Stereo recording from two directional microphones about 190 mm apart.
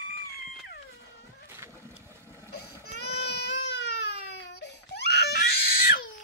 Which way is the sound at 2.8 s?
60° left (ahead or behind).